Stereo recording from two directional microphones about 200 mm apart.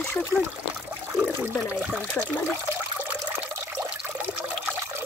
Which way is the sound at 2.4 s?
10° right (ahead or behind).